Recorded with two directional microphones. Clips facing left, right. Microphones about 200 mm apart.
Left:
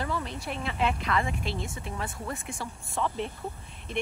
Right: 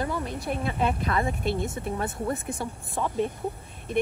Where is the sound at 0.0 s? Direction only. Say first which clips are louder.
Right 3 dB; 50° right (ahead or behind).